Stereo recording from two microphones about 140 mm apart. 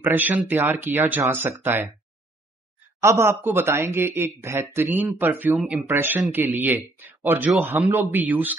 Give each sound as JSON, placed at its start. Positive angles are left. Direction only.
{"t": 0.0, "sound": "speech", "side_deg": -15}
{"t": 3.0, "sound": "speech", "side_deg": -20}
{"t": 5.6, "sound": "speech", "side_deg": 0}
{"t": 5.9, "sound": "speech", "side_deg": -15}